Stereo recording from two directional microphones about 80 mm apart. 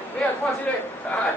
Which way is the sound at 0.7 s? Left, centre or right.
Centre.